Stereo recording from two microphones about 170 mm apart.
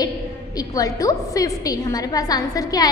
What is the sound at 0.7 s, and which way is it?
A woman's voice, 20° left (ahead or behind).